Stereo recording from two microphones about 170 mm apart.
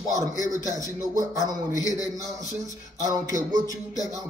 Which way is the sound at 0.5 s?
20° right (ahead or behind).